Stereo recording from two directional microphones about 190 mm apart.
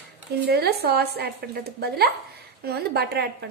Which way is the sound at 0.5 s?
55° right (ahead or behind).